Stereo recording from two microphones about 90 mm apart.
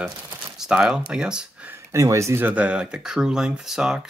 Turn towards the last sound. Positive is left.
turn(degrees=-5)  # may be behind; listen again after turning